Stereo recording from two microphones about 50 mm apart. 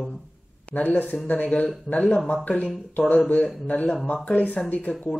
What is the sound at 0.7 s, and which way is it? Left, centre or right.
Speech, left.